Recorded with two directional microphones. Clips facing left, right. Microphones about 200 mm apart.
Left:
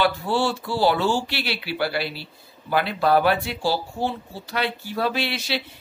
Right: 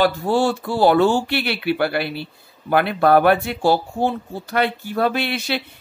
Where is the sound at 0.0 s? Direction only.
45° right (ahead or behind).